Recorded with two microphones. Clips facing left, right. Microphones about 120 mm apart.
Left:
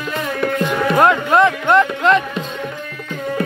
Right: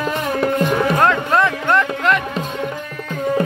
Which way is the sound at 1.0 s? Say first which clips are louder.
Left 6 dB; 15° left (ahead or behind).